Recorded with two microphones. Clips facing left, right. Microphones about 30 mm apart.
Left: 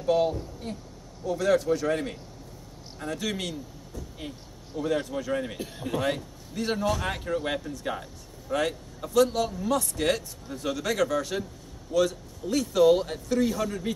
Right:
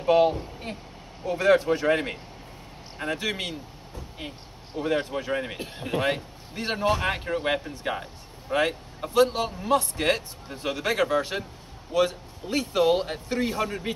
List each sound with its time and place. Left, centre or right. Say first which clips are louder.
0.0 s speech: right 4 dB; right
3.2 s speech: right 2 dB; right